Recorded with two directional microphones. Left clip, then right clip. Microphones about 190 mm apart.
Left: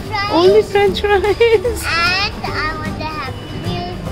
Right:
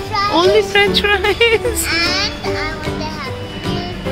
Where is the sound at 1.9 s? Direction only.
25° left (ahead or behind).